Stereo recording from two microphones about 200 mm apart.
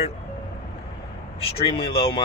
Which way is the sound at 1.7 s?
25° left (ahead or behind).